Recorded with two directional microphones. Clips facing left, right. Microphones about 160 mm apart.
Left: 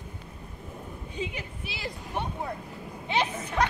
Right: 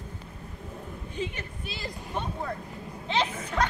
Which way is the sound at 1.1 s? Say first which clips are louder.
Right 1 dB; 15° left (ahead or behind).